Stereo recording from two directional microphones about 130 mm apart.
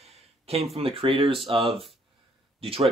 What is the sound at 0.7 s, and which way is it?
Speech, 45° right (ahead or behind).